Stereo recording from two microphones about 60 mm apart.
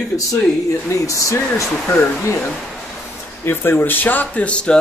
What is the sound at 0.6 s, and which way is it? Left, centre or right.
Speech, left.